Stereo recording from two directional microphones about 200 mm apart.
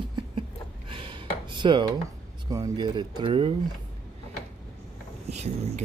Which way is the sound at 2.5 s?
20° right (ahead or behind).